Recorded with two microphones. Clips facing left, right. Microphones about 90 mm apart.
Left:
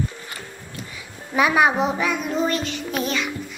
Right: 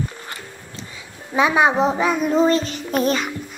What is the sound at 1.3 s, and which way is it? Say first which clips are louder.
A woman's voice: right 1 dB; 25° right (ahead or behind).